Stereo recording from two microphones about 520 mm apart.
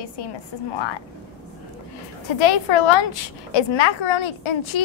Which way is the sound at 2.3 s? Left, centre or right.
Left.